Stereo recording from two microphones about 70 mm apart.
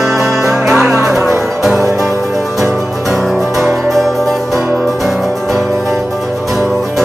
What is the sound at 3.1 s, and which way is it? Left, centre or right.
Music, centre.